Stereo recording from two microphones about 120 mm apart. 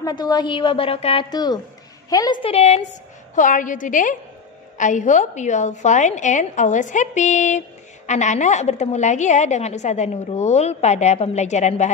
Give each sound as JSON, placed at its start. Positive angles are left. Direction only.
{"t": 0.0, "sound": "a woman's voice", "side_deg": 35}
{"t": 1.3, "sound": "a woman's voice", "side_deg": 35}
{"t": 2.4, "sound": "a woman's voice", "side_deg": 60}
{"t": 3.3, "sound": "a woman's voice", "side_deg": 90}